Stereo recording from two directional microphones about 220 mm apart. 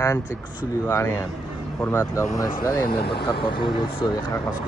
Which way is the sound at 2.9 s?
45° left (ahead or behind).